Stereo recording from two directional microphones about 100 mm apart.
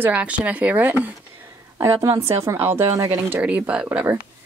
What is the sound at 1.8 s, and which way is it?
Speech, 30° right (ahead or behind).